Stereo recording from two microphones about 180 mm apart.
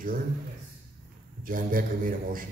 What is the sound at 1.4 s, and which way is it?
A man's voice, 50° right (ahead or behind).